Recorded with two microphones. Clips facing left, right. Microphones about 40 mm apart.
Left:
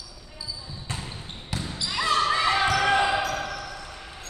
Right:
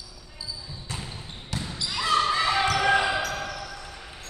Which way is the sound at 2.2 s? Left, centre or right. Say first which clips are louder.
Left 1 dB; centre.